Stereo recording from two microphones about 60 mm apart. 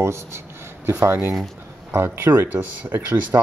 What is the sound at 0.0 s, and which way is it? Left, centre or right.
Speech, right.